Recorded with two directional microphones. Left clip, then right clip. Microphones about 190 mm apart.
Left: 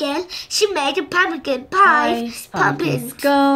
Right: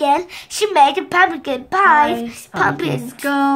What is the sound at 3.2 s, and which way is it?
Speech, 20° left (ahead or behind).